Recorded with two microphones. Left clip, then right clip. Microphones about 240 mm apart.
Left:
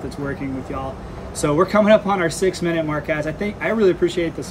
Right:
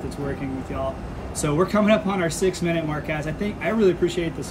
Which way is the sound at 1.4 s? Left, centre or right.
Centre.